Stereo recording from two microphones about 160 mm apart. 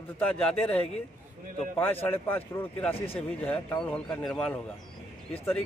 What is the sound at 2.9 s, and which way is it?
Speech, 35° left (ahead or behind).